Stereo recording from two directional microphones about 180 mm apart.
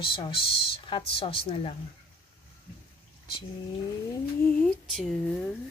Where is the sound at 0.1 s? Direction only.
30° left (ahead or behind).